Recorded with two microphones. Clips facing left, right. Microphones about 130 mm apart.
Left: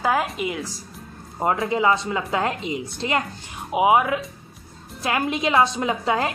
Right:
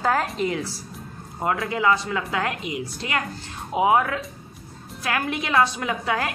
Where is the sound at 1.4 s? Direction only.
25° left (ahead or behind).